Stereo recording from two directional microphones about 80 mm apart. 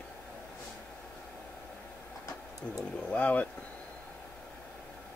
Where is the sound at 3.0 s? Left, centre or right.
Centre.